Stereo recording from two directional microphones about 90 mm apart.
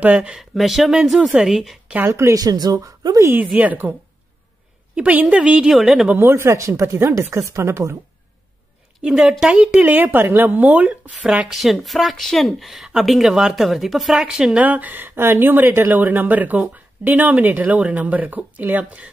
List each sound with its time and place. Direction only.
0.0 s speech: 15° right (ahead or behind)
2.0 s speech: 35° right (ahead or behind)
3.2 s a woman's voice: 25° right (ahead or behind)
4.9 s speech: 15° right (ahead or behind)
6.0 s speech: 25° right (ahead or behind)
9.0 s speech: 5° right (ahead or behind)
11.1 s speech: 5° right (ahead or behind); by 19.0 s 20° right (ahead or behind)